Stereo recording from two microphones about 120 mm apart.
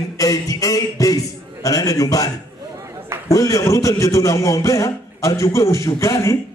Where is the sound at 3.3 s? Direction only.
25° left (ahead or behind).